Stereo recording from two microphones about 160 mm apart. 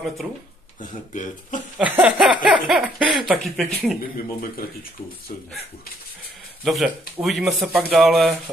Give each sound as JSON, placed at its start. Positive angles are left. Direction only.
{"t": 0.7, "sound": "speech", "side_deg": 55}
{"t": 1.8, "sound": "a sound", "side_deg": -10}
{"t": 2.4, "sound": "speech", "side_deg": -5}
{"t": 6.6, "sound": "speech", "side_deg": 0}